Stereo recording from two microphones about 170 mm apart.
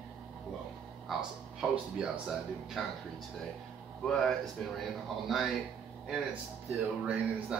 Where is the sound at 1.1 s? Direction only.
Centre (ahead or behind).